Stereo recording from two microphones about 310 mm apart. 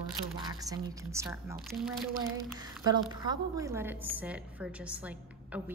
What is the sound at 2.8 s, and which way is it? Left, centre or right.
A woman's voice, centre.